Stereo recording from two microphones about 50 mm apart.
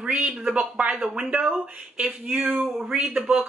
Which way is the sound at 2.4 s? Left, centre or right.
Right.